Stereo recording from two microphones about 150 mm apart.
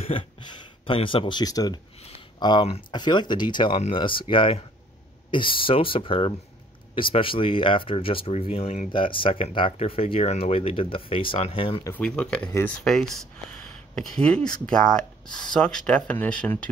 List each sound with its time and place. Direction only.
0.0 s speech: 35° left (ahead or behind)
2.0 s a sound: 40° left (ahead or behind)
2.4 s speech: 35° left (ahead or behind)
12.0 s speech: 5° left (ahead or behind)